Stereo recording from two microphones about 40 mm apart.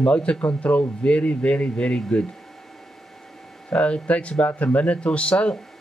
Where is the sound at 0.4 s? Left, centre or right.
Left.